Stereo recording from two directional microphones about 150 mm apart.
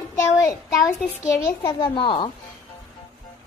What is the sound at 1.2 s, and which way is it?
A child's voice, 25° left (ahead or behind).